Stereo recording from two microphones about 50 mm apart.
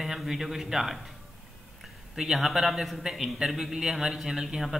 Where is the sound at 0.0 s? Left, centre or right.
Centre.